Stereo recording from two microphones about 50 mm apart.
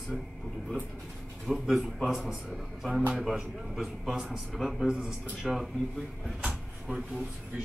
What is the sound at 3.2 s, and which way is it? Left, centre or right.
Speech, centre.